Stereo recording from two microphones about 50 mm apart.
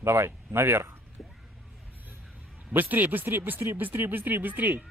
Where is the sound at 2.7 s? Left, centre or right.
Right.